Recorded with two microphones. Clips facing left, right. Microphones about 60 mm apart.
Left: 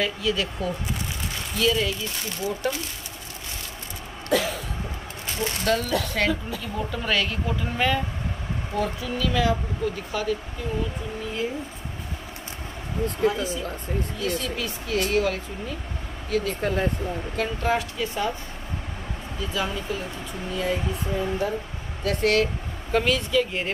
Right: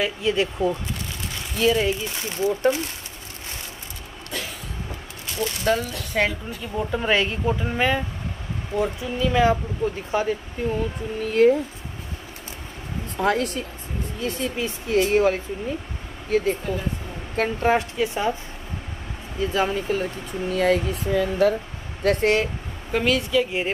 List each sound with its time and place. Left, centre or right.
0.2 s speech: right
5.7 s speech: centre; by 10.7 s right
11.2 s speech: right
13.2 s speech: right
14.2 s speech: right
19.4 s speech: right
20.5 s speech: right
21.1 s speech: right
22.0 s speech: right
22.8 s speech: centre